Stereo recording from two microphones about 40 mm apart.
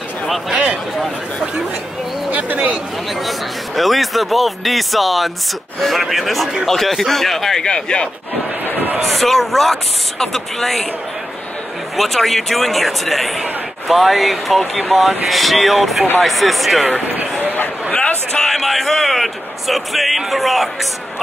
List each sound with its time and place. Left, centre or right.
0.5 s a man's voice: right
2.3 s a sound: right
3.3 s speech: centre; by 8.1 s left
9.1 s speech: centre
12.0 s speech: centre
18.3 s speech: centre